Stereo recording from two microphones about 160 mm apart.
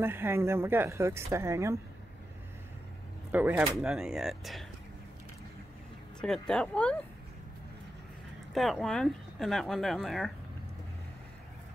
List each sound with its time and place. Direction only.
0.0 s speech: 15° right (ahead or behind)
3.3 s speech: 10° right (ahead or behind)
6.2 s speech: 5° left (ahead or behind)
8.5 s speech: centre (ahead or behind)